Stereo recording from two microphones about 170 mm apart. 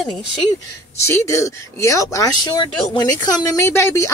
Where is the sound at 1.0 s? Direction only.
15° left (ahead or behind).